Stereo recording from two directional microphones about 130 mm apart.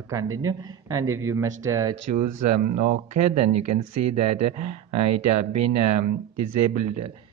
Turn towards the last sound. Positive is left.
turn(degrees=-50)  # may be behind; listen again after turning